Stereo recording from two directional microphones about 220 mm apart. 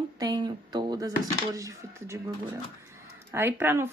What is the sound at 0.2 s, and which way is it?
Speech, 20° right (ahead or behind).